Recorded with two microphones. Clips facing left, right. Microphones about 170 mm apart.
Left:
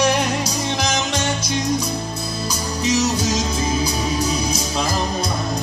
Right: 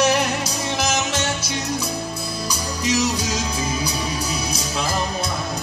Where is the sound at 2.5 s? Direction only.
10° right (ahead or behind).